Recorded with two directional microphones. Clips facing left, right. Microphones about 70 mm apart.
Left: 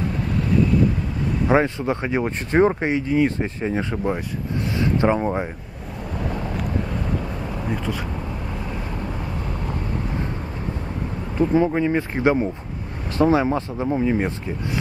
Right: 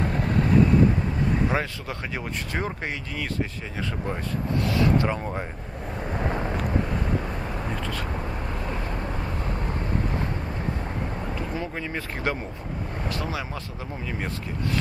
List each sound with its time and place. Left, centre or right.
1.5 s speech: left
6.1 s vehicle: right
11.3 s speech: left
13.2 s speech: left